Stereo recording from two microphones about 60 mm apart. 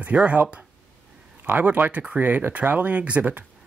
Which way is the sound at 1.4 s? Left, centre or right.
Right.